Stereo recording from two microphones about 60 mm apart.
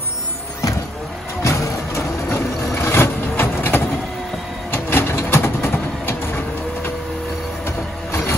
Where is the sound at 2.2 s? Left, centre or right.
Left.